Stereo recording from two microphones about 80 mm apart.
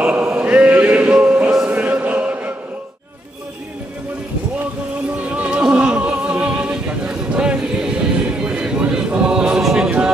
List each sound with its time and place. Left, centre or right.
0.0 s choir: centre
5.4 s opera: centre
8.5 s chant: centre
9.6 s a capella: centre
9.8 s a capella: centre